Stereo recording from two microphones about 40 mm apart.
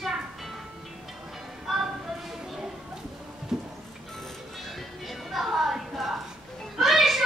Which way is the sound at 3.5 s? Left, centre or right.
Centre.